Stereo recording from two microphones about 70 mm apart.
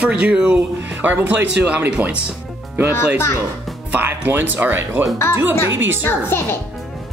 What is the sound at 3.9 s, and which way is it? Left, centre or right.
Speech, right.